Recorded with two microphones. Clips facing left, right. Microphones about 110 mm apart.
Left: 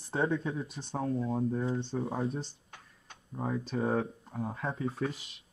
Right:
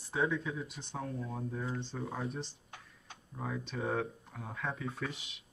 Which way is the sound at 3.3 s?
40° left (ahead or behind).